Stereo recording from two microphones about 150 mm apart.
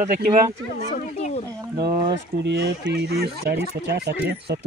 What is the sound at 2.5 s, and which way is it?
Speech, 90° right.